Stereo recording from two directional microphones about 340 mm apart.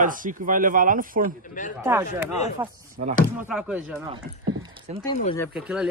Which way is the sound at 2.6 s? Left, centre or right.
Centre.